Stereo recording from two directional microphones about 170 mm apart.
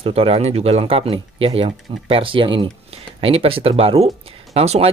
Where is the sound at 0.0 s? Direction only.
35° right (ahead or behind).